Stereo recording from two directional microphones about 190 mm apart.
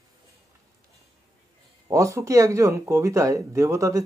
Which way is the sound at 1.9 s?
15° right (ahead or behind).